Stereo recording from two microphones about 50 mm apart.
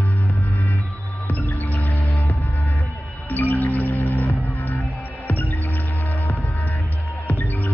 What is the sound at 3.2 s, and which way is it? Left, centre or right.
Music, left.